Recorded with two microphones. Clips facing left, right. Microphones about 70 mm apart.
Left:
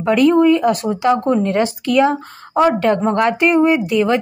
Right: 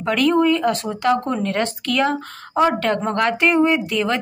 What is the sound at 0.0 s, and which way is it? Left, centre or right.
A woman's voice, centre.